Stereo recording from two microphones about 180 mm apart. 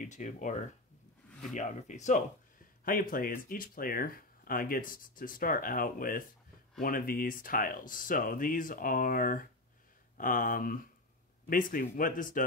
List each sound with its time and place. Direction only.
0.0 s speech: 45° left (ahead or behind)